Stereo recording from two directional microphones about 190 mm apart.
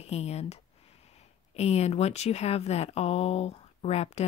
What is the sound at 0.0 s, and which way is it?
Speech, 35° left (ahead or behind).